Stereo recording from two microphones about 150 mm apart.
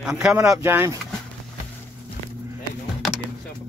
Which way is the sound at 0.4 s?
20° right (ahead or behind).